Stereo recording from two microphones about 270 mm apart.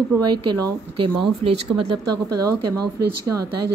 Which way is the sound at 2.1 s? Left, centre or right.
Right.